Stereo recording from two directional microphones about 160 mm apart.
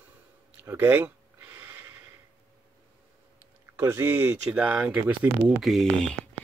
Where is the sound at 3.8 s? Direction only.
15° right (ahead or behind); by 6.3 s centre (ahead or behind).